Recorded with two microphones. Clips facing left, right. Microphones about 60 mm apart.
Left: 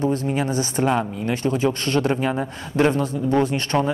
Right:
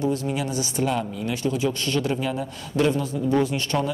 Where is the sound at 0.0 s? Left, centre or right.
Left.